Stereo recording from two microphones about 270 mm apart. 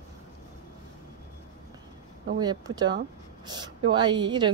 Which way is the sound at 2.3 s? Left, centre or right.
Centre.